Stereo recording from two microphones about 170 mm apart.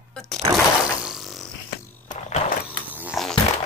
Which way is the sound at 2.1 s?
40° left (ahead or behind).